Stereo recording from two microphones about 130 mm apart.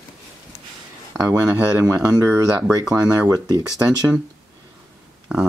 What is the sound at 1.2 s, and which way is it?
Speech, 10° right (ahead or behind).